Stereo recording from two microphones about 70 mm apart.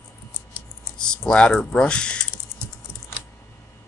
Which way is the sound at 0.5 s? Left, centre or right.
Centre.